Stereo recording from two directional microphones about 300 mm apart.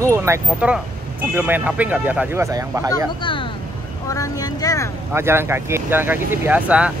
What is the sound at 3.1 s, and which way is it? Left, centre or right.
Vehicle, centre.